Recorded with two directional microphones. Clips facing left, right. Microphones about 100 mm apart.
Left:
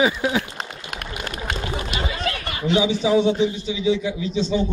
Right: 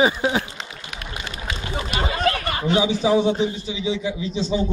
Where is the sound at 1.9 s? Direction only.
45° right (ahead or behind).